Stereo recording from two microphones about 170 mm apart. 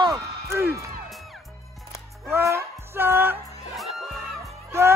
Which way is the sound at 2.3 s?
15° right (ahead or behind).